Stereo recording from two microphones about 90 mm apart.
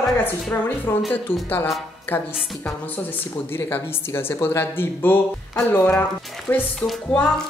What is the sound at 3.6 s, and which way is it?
Speech, 25° left (ahead or behind).